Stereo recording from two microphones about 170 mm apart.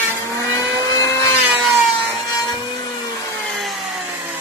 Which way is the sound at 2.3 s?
20° left (ahead or behind).